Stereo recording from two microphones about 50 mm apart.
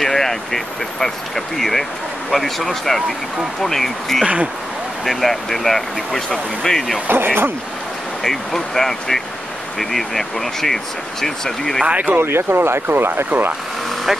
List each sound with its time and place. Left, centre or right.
0.0 s speech: centre
7.1 s speech: right
8.2 s speech: centre
11.8 s speech: right
12.2 s speech: right